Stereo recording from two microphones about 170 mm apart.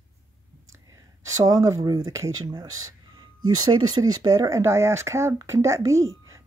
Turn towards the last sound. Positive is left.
turn(degrees=-15)  # may be behind; listen again after turning